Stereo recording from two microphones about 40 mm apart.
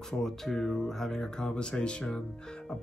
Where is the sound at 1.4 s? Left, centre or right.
Left.